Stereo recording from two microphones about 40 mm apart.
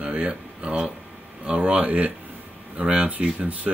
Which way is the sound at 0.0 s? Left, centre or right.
Right.